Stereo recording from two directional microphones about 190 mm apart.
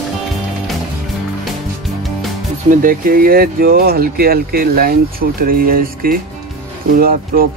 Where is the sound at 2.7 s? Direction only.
45° right (ahead or behind).